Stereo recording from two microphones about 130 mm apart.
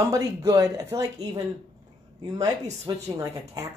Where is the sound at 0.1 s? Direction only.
25° right (ahead or behind).